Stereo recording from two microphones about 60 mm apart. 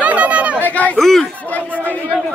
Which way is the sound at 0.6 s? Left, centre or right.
Left.